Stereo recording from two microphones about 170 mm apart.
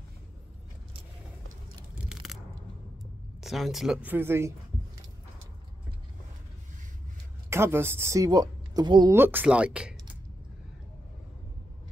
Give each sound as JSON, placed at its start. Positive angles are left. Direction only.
{"t": 2.2, "sound": "crunch", "side_deg": 0}
{"t": 3.3, "sound": "speech", "side_deg": 0}
{"t": 7.4, "sound": "speech", "side_deg": -15}
{"t": 9.1, "sound": "speech", "side_deg": -10}